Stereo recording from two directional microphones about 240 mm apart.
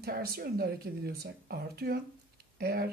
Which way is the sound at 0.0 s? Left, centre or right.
Right.